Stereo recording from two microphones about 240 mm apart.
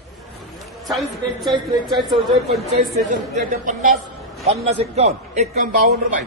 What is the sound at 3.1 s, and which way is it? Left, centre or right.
A man's voice, right.